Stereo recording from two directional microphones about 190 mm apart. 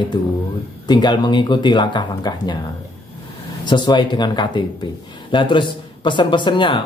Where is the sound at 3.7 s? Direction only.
25° left (ahead or behind).